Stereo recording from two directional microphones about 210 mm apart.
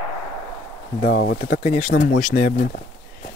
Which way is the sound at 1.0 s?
50° left (ahead or behind).